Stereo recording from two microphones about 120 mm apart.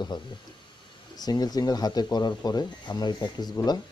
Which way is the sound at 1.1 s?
35° left (ahead or behind).